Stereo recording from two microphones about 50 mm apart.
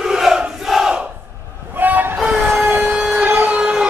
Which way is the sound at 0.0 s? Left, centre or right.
Centre.